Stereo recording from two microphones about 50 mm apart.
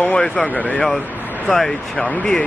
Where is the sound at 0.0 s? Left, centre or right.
Left.